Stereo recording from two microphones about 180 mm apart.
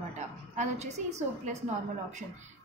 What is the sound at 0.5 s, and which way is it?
Speech, 40° right (ahead or behind).